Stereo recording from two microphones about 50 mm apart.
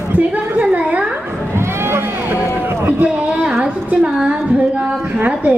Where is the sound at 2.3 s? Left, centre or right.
Right.